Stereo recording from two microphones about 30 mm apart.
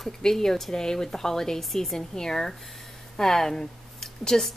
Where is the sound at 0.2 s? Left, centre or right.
Centre.